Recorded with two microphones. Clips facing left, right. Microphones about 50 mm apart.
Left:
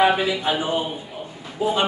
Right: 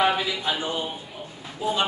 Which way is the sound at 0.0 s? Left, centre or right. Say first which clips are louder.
Left 4 dB; centre.